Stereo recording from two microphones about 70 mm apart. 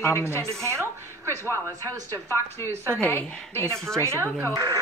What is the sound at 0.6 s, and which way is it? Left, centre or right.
Speech, right.